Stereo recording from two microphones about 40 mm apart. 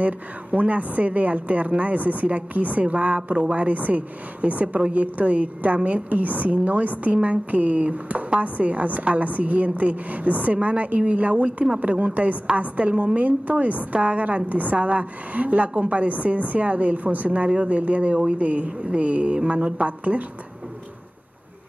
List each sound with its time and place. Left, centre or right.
0.0 s a woman's voice: right